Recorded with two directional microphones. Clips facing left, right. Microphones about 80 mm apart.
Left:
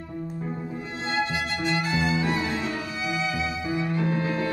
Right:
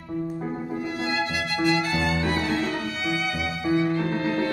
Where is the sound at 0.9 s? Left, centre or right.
Left.